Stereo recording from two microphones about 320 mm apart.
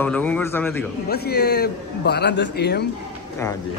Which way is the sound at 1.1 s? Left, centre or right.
Left.